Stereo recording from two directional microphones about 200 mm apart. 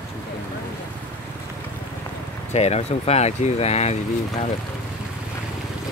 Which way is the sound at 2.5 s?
35° left (ahead or behind).